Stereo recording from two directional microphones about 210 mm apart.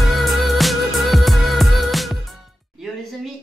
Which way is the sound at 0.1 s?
Centre (ahead or behind).